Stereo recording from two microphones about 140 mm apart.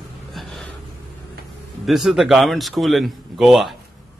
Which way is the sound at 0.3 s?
Centre (ahead or behind).